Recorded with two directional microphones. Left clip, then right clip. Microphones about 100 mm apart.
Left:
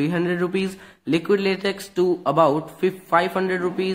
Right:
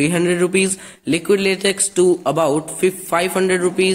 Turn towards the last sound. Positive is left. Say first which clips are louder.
# right 6 dB
turn(degrees=-30)  # may be behind; listen again after turning